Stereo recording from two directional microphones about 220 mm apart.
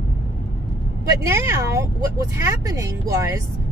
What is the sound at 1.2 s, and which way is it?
Speech, 10° right (ahead or behind).